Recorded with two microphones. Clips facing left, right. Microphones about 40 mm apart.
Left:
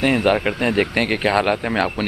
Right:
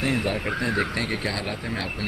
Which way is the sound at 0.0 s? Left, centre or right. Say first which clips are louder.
Left 8 dB; left.